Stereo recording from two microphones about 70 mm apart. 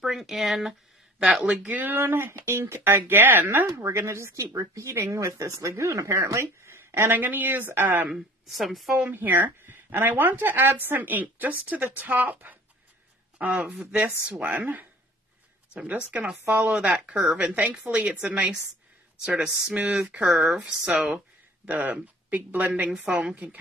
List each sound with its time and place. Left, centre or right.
0.0 s speech: centre
1.4 s speech: right
8.1 s speech: centre
9.1 s a woman's voice: right
15.7 s a woman's voice: right
22.9 s a woman's voice: centre